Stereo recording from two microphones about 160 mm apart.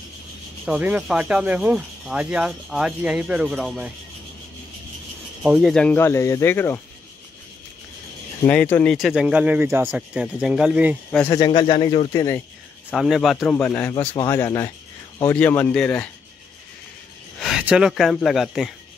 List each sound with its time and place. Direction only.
0.7 s speech: 10° right (ahead or behind)
5.4 s speech: 5° right (ahead or behind); by 6.8 s 10° left (ahead or behind)
8.5 s speech: 10° left (ahead or behind)
8.9 s speech: centre (ahead or behind)
11.2 s a man's voice: 25° left (ahead or behind)
11.6 s speech: 35° left (ahead or behind)
12.1 s a man's voice: 20° left (ahead or behind)
12.9 s a man's voice: centre (ahead or behind)
13.5 s speech: 10° left (ahead or behind)
17.4 s speech: 5° right (ahead or behind)